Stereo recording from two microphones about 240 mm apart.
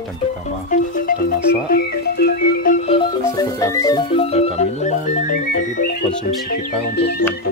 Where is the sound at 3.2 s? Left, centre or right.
Centre; by 5.9 s left.